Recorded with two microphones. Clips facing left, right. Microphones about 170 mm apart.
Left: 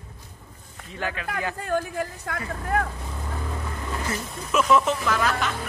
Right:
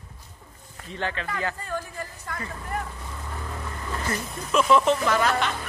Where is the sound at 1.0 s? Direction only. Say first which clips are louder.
Even; 10° left (ahead or behind).